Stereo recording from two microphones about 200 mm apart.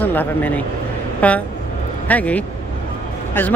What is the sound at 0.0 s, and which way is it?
Speech, 10° left (ahead or behind).